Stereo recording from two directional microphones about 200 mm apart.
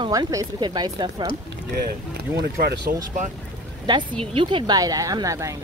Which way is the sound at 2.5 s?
55° right (ahead or behind).